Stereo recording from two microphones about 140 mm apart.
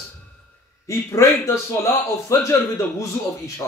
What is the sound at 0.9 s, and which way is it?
A man's voice, 20° left (ahead or behind).